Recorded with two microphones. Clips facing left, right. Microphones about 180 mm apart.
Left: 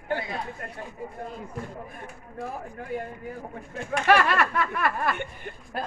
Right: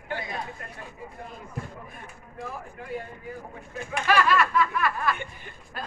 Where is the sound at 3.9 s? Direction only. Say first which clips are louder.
Left 2 dB; 60° left (ahead or behind).